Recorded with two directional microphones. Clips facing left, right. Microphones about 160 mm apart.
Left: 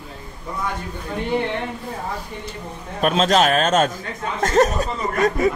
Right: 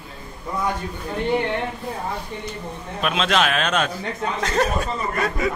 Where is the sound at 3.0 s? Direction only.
40° left (ahead or behind).